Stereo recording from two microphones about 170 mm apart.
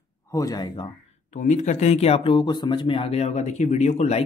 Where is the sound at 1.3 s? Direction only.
45° left (ahead or behind).